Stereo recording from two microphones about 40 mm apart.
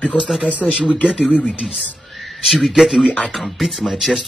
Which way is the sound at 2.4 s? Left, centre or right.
Centre.